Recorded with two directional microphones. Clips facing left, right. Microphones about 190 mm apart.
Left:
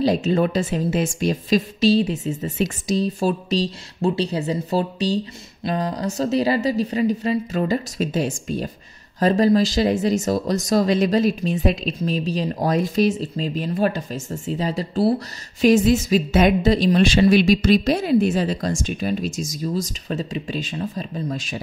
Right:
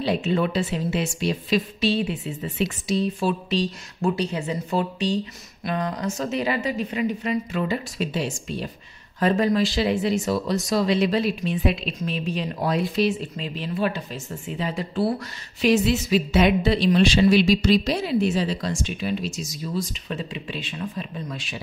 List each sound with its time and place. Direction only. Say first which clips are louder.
0.0 s a woman's voice: left 4 dB; 40° left (ahead or behind)